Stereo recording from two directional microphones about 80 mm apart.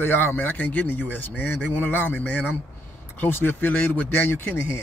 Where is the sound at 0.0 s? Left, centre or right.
Left.